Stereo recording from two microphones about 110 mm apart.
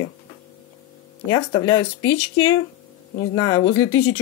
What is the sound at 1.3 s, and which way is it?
Speech, 40° left (ahead or behind).